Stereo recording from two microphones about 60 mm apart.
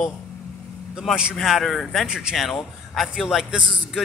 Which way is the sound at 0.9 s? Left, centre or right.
Centre.